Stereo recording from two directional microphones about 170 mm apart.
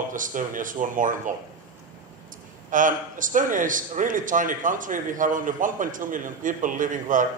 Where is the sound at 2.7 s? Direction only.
50° right (ahead or behind).